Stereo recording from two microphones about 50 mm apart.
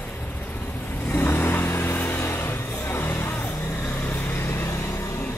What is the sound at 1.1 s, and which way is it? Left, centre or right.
Vehicle, left.